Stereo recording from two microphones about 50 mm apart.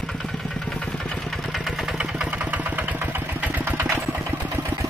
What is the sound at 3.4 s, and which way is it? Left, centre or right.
Engine, right.